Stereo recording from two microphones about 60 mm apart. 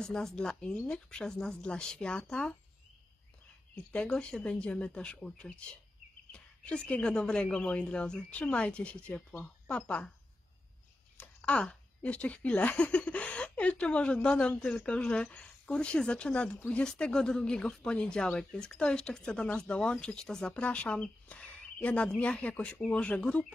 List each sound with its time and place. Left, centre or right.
0.0 s speech: centre
3.9 s speech: centre
11.4 s speech: centre